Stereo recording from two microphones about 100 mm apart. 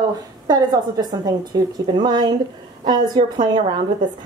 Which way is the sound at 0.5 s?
40° right (ahead or behind).